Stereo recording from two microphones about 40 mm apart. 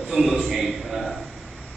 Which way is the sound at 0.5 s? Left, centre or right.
Centre.